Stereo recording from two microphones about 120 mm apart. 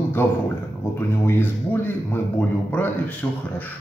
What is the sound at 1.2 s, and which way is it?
A man's voice, 20° left (ahead or behind).